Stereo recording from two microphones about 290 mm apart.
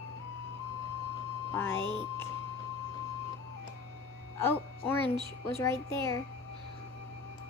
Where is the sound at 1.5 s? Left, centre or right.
Centre.